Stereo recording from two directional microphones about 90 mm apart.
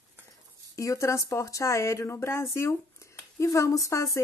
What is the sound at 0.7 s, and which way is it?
Speech, 35° left (ahead or behind).